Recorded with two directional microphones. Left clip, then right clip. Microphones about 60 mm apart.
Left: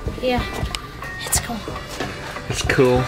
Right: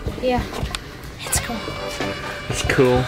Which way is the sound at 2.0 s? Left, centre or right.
Centre.